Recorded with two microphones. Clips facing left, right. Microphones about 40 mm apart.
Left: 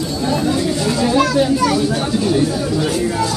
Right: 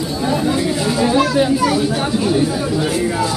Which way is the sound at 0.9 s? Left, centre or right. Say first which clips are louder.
Even; centre.